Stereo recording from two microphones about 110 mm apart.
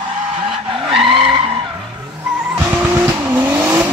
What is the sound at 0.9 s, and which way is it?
Skidding, 55° right (ahead or behind).